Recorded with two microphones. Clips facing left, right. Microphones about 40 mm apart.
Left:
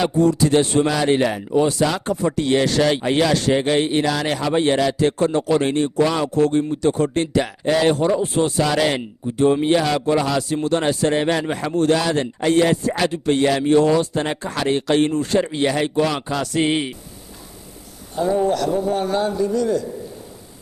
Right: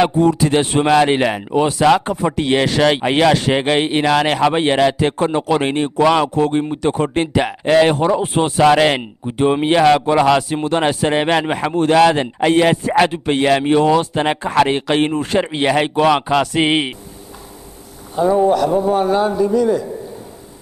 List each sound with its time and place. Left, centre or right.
0.1 s speech: right
2.0 s speech: right
2.8 s a man's voice: right
5.0 s speech: right
6.3 s a man's voice: right
15.5 s a man's voice: right
18.1 s a man's voice: centre